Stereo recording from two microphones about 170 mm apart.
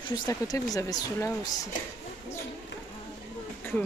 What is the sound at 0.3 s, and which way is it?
Speech, 20° left (ahead or behind).